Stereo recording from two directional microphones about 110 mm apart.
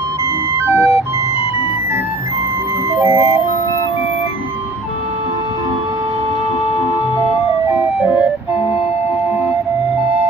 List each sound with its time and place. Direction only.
0.6 s ice cream truck: 25° right (ahead or behind)
2.9 s music: 25° right (ahead or behind)